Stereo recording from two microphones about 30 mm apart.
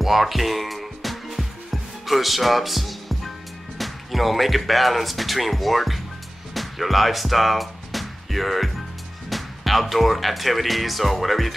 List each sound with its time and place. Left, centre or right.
0.0 s music: centre
3.7 s speech: centre